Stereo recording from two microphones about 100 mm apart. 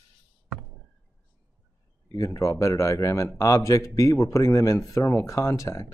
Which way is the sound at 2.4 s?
30° left (ahead or behind).